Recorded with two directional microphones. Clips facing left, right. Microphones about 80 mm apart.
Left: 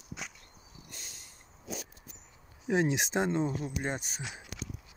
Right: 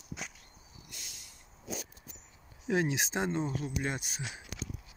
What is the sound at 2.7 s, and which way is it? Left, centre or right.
Speech, left.